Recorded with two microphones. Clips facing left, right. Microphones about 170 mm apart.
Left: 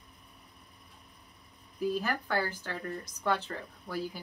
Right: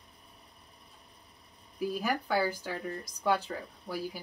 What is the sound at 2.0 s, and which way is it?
Speech, 10° right (ahead or behind).